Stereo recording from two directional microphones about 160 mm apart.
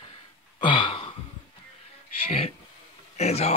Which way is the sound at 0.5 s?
30° left (ahead or behind).